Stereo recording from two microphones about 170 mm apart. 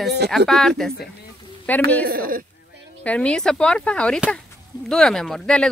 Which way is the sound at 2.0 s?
60° right (ahead or behind).